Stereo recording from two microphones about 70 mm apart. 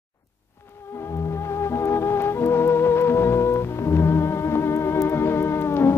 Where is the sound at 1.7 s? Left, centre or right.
Left.